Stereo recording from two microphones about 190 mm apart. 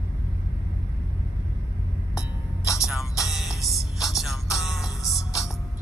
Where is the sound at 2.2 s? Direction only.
15° left (ahead or behind).